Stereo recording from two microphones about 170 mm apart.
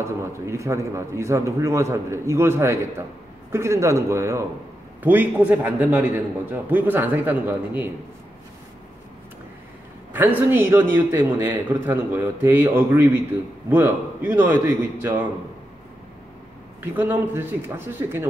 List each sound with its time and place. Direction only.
0.0 s a man's voice: 15° right (ahead or behind)
10.1 s a man's voice: 10° right (ahead or behind)
16.8 s a man's voice: 10° right (ahead or behind)